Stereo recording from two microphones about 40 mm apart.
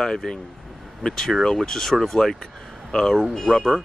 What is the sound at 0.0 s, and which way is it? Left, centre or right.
Speech, centre.